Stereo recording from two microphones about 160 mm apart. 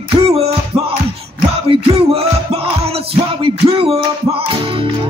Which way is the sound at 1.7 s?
40° right (ahead or behind).